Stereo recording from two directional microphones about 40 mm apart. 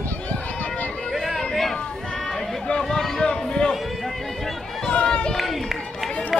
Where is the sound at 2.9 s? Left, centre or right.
Centre.